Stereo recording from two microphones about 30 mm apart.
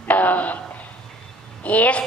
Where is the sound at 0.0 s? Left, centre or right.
Left.